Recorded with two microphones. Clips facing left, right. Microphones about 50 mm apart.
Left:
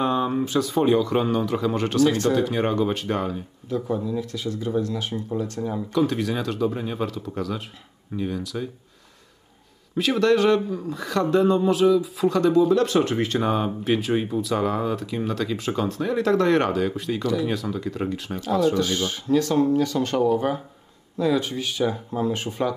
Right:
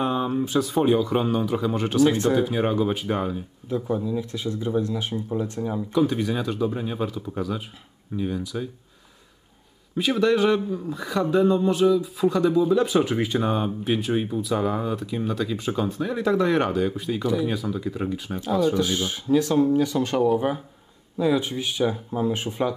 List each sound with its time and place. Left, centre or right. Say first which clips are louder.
0.0 s a sound: left 2 dB; centre
0.5 s speech: even; centre
2.0 s speech: right 1 dB; centre
2.4 s speech: even; centre
3.9 s speech: right 1 dB; centre
4.2 s speech: even; right
9.9 s speech: left 1 dB; centre
13.4 s speech: left 1 dB; centre
18.8 s speech: even; centre
21.8 s speech: even; centre